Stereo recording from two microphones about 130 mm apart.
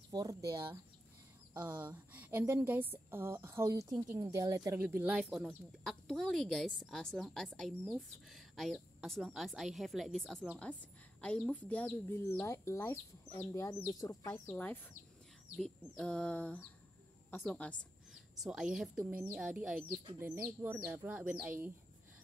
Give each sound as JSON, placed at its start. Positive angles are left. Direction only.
{"t": 0.1, "sound": "speech", "side_deg": -30}
{"t": 1.7, "sound": "a woman's voice", "side_deg": -15}
{"t": 4.7, "sound": "a woman's voice", "side_deg": -15}
{"t": 5.9, "sound": "a woman's voice", "side_deg": 5}
{"t": 18.1, "sound": "a woman's voice", "side_deg": 0}
{"t": 20.2, "sound": "a woman's voice", "side_deg": -20}